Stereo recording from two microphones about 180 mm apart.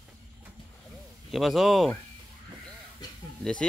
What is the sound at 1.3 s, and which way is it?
Speech, centre (ahead or behind).